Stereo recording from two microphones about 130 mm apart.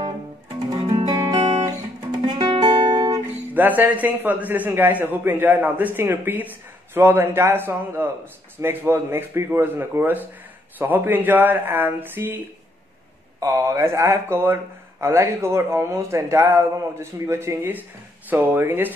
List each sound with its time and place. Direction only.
0.7 s music: 50° right (ahead or behind)
1.0 s guitar: 30° right (ahead or behind)
2.2 s music: 40° right (ahead or behind)
3.5 s a man's voice: 15° right (ahead or behind)
13.4 s a man's voice: 20° right (ahead or behind)